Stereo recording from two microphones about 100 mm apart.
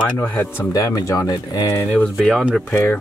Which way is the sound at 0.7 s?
35° left (ahead or behind).